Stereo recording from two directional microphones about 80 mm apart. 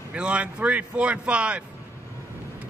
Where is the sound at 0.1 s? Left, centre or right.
Centre.